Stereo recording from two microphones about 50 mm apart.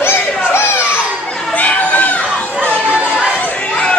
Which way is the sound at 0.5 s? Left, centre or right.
Left.